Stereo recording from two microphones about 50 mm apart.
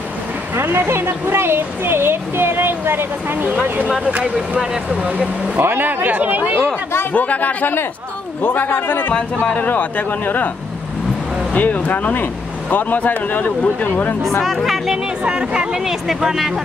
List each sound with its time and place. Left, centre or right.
0.7 s speech: right
5.0 s speech: right
5.6 s speech: right
7.1 s speech: left
9.5 s speech: left
11.5 s speech: left
14.4 s speech: centre
15.2 s speech: centre
15.8 s speech: centre